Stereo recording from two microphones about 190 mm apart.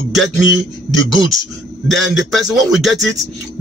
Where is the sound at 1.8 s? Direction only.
Centre (ahead or behind).